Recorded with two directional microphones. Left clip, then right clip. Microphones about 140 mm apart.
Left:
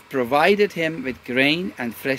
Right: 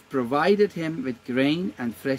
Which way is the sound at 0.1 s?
25° right (ahead or behind).